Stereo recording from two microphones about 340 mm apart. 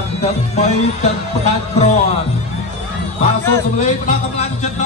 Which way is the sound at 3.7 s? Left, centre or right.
Left.